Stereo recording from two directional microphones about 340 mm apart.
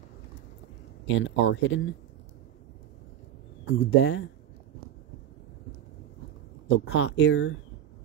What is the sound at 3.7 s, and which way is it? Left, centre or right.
Speech, left.